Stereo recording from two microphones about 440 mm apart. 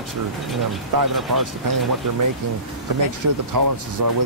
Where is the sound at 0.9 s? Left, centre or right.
Right.